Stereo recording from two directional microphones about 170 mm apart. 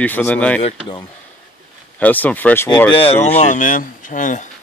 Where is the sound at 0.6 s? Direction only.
25° left (ahead or behind).